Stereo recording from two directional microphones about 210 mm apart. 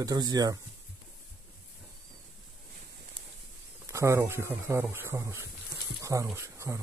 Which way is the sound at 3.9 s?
15° right (ahead or behind).